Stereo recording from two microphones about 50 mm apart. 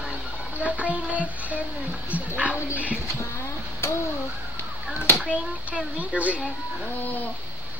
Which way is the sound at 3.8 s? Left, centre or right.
Left.